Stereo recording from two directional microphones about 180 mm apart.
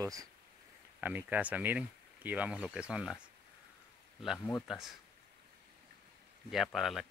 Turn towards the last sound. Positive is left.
turn(degrees=0)  # may be behind; listen again after turning